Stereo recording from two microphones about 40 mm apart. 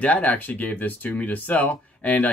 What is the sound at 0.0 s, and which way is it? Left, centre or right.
Speech, left.